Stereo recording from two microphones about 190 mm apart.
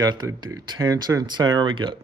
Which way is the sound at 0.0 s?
20° right (ahead or behind).